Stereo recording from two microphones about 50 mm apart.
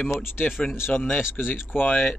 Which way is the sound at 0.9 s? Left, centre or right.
Left.